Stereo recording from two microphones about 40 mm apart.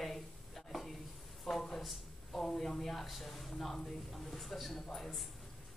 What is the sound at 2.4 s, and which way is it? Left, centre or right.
Speech, centre.